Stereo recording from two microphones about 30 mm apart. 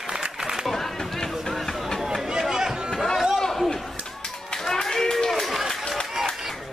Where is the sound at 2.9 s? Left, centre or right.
Centre.